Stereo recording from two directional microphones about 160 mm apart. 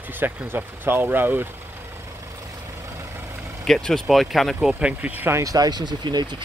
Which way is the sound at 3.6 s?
Centre (ahead or behind).